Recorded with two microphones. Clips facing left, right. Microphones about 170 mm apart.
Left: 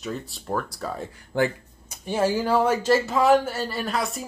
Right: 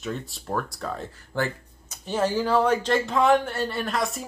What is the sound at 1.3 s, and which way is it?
Speech, 15° left (ahead or behind).